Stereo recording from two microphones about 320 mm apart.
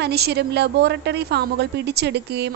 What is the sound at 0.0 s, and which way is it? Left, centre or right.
A woman's voice, right.